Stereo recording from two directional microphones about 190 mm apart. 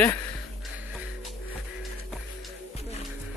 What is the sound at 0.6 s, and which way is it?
Music, 5° right (ahead or behind).